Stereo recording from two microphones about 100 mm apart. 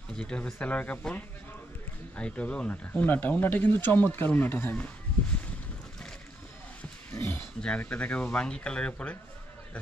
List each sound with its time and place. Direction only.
0.2 s speech: 10° left (ahead or behind)
7.1 s a sound: 20° left (ahead or behind)
7.6 s speech: 10° left (ahead or behind)